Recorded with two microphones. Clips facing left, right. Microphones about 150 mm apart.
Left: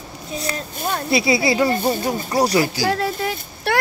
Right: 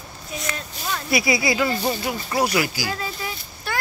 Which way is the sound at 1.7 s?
50° left (ahead or behind).